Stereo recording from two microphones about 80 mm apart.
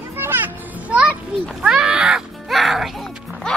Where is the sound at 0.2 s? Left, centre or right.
Right.